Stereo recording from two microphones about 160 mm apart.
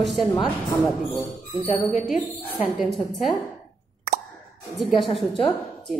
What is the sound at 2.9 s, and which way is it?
Speech, centre (ahead or behind).